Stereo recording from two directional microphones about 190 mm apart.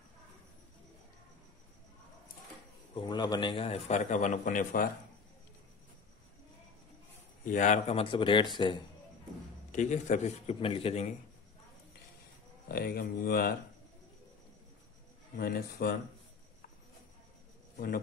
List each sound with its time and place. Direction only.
2.9 s a man's voice: 25° left (ahead or behind); by 4.8 s 45° left (ahead or behind)
7.4 s a man's voice: 40° left (ahead or behind); by 8.8 s 25° left (ahead or behind)
9.7 s a man's voice: 40° left (ahead or behind)
12.6 s speech: 55° left (ahead or behind)
15.3 s speech: 55° left (ahead or behind)
17.7 s a man's voice: 55° left (ahead or behind)